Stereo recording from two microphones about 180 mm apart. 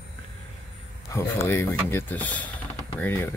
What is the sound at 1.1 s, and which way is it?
Speech, 15° left (ahead or behind).